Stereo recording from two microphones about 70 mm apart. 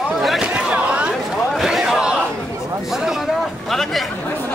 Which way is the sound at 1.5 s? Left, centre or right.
Centre.